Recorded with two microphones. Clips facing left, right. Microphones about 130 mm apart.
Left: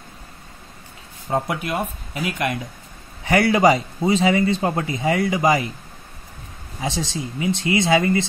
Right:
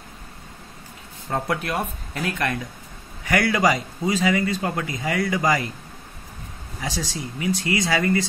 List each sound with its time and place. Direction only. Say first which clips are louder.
1.3 s a man's voice: left 2 dB; 10° left (ahead or behind)
6.8 s a man's voice: left 4 dB; 20° left (ahead or behind)